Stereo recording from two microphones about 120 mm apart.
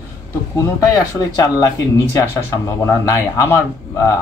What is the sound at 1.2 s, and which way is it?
Speech, 30° left (ahead or behind).